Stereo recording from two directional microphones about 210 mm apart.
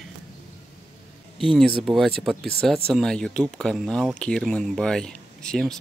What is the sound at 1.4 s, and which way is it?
Speech, centre (ahead or behind).